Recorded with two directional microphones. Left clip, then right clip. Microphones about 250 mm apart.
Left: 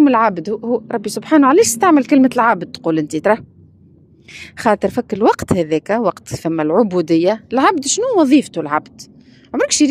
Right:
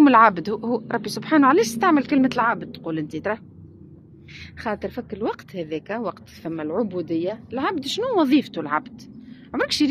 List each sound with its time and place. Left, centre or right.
0.0 s a woman's voice: centre